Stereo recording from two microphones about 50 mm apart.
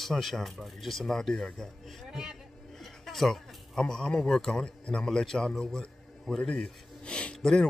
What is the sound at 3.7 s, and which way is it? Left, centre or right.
A man's voice, centre.